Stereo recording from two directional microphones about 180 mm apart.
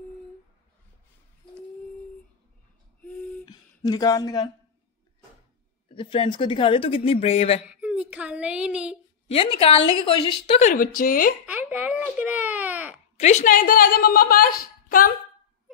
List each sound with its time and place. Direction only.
3.0 s gasp: 5° left (ahead or behind)
3.4 s speech: 20° left (ahead or behind)
5.9 s a woman's voice: 30° left (ahead or behind)
7.6 s speech: 5° right (ahead or behind)
9.3 s a woman's voice: 30° left (ahead or behind)
10.7 s a woman's voice: 50° left (ahead or behind)
11.4 s baby cry: 10° right (ahead or behind)
13.2 s a woman's voice: 40° left (ahead or behind)